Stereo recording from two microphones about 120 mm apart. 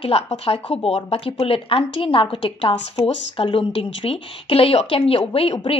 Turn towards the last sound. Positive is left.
turn(degrees=55)  # may be behind; listen again after turning